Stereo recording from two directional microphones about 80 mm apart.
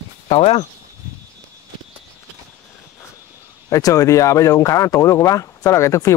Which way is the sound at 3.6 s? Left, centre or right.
Left.